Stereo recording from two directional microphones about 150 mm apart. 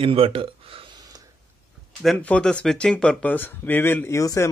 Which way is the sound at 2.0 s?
5° left (ahead or behind).